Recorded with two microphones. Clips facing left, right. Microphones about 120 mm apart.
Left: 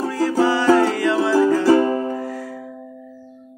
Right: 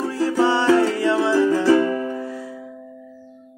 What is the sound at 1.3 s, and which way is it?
Music, 40° left (ahead or behind).